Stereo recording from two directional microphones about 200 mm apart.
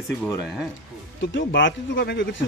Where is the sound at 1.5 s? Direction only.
65° left (ahead or behind).